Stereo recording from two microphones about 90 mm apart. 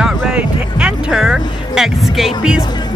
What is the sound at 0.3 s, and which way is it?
Music, 10° right (ahead or behind).